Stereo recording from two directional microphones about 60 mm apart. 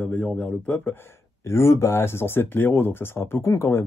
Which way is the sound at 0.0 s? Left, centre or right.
Left.